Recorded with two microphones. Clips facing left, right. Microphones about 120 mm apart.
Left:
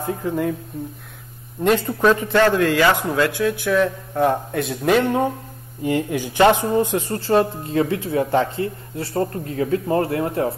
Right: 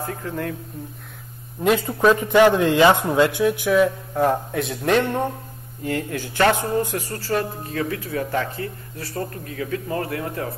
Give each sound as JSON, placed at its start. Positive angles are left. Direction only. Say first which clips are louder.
{"t": 0.0, "sound": "speech", "louder": "left 5 dB", "side_deg": 15}
{"t": 1.6, "sound": "speech", "louder": "left 1 dB", "side_deg": -5}
{"t": 2.1, "sound": "speech", "louder": "right 2 dB", "side_deg": -15}
{"t": 5.9, "sound": "speech", "louder": "left 4 dB", "side_deg": 15}